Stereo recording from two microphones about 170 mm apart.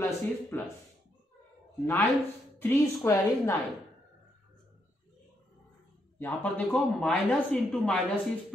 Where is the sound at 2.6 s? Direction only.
15° left (ahead or behind).